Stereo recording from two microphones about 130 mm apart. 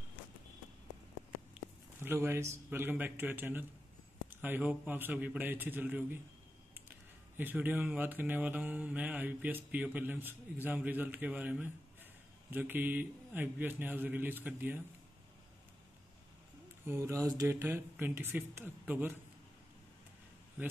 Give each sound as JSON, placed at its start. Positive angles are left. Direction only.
{"t": 1.5, "sound": "speech", "side_deg": -15}
{"t": 16.8, "sound": "speech", "side_deg": -20}